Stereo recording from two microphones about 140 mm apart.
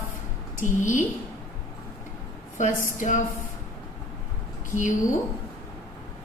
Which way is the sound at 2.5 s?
65° left (ahead or behind).